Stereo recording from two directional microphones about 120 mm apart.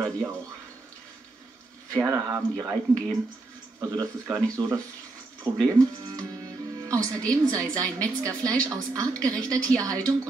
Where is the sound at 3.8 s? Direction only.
25° right (ahead or behind).